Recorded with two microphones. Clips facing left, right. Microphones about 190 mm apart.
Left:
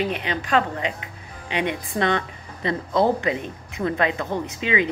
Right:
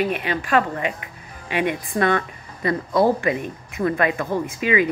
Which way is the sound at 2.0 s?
20° left (ahead or behind).